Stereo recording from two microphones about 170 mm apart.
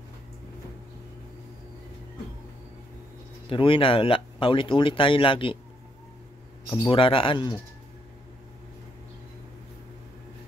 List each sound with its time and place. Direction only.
3.4 s speech: 30° left (ahead or behind)
6.9 s speech: 30° left (ahead or behind)